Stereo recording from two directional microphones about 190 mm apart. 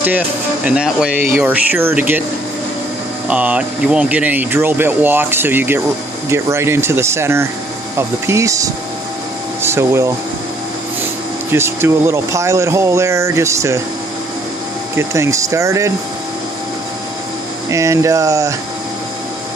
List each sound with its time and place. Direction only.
0.7 s speech: 5° right (ahead or behind)
3.3 s speech: 5° right (ahead or behind)
11.5 s speech: 15° right (ahead or behind)
15.0 s speech: 15° right (ahead or behind)
17.6 s speech: 15° right (ahead or behind)